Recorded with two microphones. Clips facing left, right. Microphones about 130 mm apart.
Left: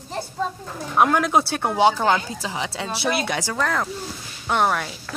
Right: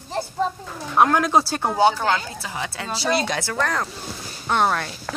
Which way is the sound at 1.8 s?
20° left (ahead or behind).